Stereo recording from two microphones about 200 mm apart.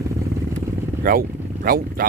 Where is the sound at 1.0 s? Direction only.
45° right (ahead or behind).